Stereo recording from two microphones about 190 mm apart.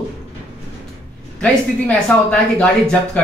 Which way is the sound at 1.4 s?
5° left (ahead or behind).